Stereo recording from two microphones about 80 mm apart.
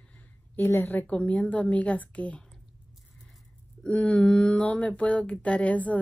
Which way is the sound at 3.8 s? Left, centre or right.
Centre.